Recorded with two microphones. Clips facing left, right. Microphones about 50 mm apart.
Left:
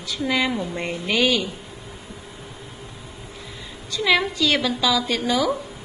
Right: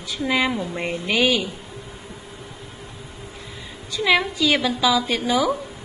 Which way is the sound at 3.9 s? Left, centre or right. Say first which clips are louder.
Right 1 dB; centre.